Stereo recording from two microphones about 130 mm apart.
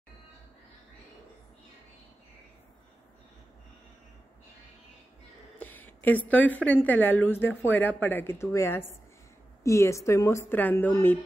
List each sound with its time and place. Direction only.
5.6 s a woman's voice: 15° left (ahead or behind)